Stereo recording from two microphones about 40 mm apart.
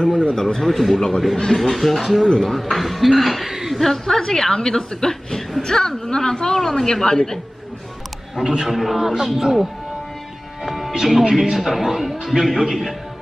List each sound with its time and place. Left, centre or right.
0.0 s speech: left
0.4 s a woman's voice: centre
0.9 s a woman's voice: centre
1.6 s a man's voice: centre
3.4 s chuckle: centre
3.8 s a woman's voice: centre
8.6 s a man's voice: centre
10.6 s music: centre
10.9 s a man's voice: centre